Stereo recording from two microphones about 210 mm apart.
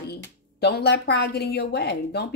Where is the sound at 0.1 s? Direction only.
50° left (ahead or behind).